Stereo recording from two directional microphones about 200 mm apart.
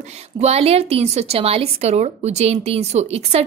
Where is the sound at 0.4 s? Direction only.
30° right (ahead or behind).